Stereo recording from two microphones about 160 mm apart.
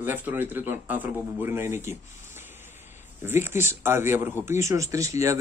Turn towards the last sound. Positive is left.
turn(degrees=-20)  # may be behind; listen again after turning